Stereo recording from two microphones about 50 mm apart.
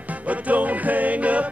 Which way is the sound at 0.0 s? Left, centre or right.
Right.